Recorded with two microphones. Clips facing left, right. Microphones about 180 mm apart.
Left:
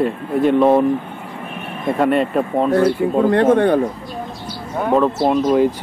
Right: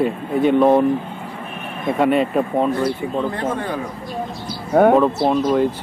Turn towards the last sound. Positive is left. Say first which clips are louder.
# left 2 dB
turn(degrees=5)  # may be behind; listen again after turning